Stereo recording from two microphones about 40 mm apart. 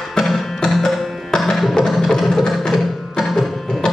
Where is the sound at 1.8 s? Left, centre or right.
Centre.